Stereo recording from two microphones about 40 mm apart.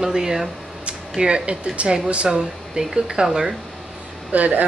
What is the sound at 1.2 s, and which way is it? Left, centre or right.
Speech, right.